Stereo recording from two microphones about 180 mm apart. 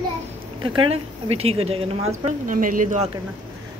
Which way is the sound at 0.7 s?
35° right (ahead or behind).